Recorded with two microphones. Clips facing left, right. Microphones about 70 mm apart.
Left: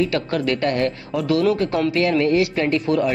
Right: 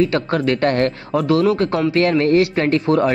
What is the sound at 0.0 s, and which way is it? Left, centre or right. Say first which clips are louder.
Speech: right 3 dB; right.